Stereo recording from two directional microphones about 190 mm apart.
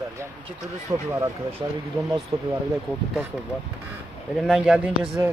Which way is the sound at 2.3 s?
30° right (ahead or behind).